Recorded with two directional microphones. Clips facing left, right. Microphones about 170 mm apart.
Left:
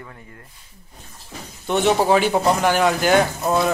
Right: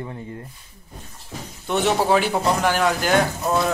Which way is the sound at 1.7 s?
Centre (ahead or behind).